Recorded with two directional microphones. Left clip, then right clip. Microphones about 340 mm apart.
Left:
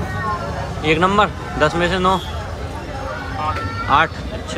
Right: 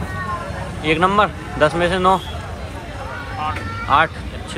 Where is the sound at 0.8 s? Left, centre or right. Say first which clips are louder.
Even; centre.